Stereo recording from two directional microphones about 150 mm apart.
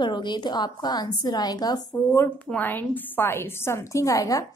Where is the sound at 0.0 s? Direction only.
30° left (ahead or behind).